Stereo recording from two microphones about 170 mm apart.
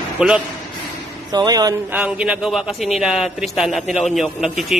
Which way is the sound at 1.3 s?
25° right (ahead or behind).